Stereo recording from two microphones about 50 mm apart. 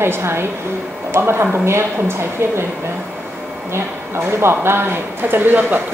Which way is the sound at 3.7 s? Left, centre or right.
Right.